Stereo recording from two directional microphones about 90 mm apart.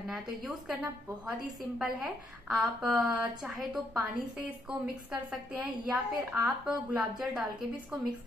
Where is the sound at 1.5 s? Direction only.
10° right (ahead or behind).